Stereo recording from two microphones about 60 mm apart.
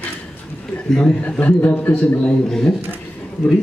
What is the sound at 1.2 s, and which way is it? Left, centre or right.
A man's voice, left.